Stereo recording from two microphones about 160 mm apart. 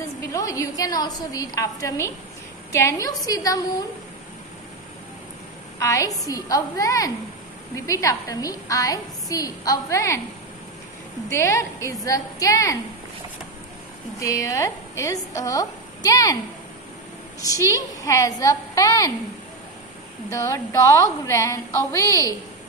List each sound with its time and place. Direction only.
0.3 s a woman's voice: 20° left (ahead or behind)
5.8 s a woman's voice: 20° left (ahead or behind)
11.2 s a woman's voice: 15° left (ahead or behind)
14.2 s a woman's voice: 20° left (ahead or behind)
17.4 s a woman's voice: 20° left (ahead or behind)
20.2 s a woman's voice: 15° left (ahead or behind)